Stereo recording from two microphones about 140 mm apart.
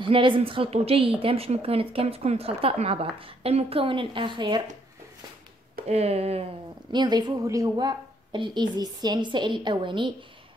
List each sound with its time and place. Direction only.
0.0 s a woman's voice: 35° right (ahead or behind)
5.9 s speech: 50° right (ahead or behind)
6.9 s a woman's voice: 30° right (ahead or behind)